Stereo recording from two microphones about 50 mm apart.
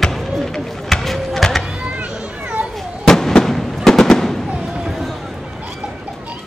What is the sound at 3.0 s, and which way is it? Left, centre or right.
Fireworks, centre.